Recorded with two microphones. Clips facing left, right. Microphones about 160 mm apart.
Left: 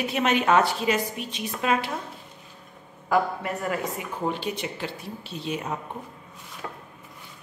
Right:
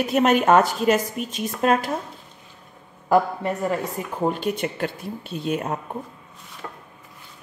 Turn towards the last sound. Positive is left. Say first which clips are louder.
# even
turn(degrees=10)  # may be behind; listen again after turning